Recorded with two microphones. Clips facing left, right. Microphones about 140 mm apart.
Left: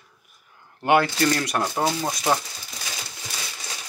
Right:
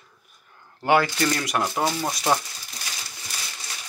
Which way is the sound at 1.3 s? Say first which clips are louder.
Left 2 dB; 20° right (ahead or behind).